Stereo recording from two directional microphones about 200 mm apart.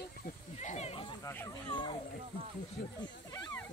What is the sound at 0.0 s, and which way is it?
Snake, 40° left (ahead or behind).